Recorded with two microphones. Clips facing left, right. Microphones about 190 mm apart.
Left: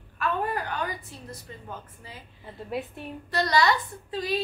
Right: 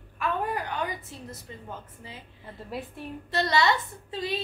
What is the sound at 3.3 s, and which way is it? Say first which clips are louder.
A woman's voice: left 1 dB; 25° right (ahead or behind).